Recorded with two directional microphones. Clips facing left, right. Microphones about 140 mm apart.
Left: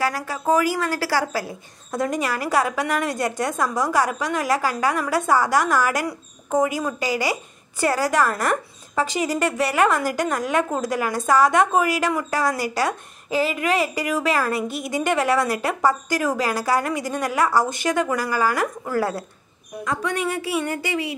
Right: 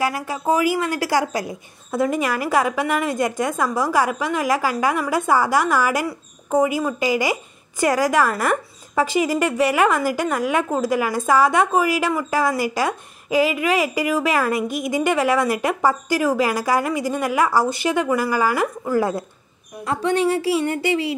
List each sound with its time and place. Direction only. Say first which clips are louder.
0.0 s a woman's voice: right 1 dB; 15° right (ahead or behind)
1.9 s a woman's voice: right 3 dB; 10° right (ahead or behind)
19.8 s a woman's voice: right 5 dB; 30° right (ahead or behind)